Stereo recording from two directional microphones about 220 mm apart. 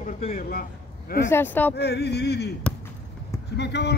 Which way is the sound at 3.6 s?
50° left (ahead or behind).